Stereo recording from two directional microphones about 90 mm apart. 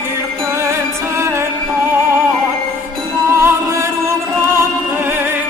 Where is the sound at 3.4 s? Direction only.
25° right (ahead or behind).